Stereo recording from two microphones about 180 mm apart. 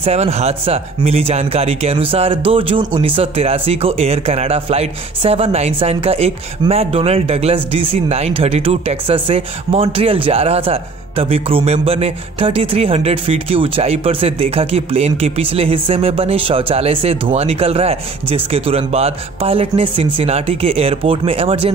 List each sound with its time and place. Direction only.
0.0 s speech: 35° right (ahead or behind)